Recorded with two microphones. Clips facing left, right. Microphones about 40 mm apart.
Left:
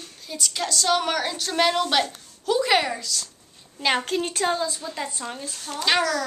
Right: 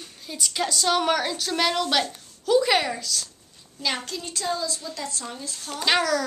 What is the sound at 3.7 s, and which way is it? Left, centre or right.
Speech, left.